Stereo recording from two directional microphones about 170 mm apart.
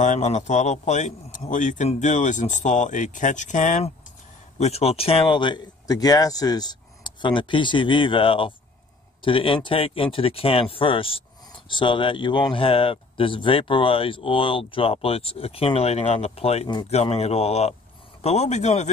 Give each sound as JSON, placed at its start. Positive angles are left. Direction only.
{"t": 0.0, "sound": "speech", "side_deg": 45}